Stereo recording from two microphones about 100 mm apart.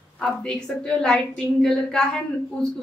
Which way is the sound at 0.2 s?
5° left (ahead or behind).